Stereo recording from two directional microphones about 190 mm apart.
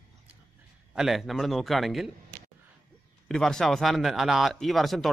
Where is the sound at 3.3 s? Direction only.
Centre (ahead or behind).